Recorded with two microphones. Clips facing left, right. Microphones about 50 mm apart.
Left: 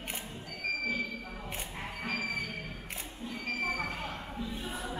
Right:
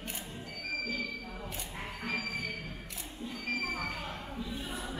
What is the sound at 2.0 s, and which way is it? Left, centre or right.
Music, left.